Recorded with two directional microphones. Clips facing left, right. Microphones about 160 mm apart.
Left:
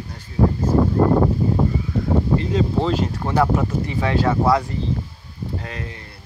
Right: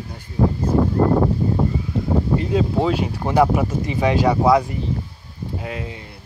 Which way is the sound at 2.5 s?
10° right (ahead or behind).